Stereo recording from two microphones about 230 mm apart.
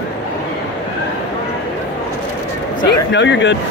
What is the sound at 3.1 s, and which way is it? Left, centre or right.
Speech, left.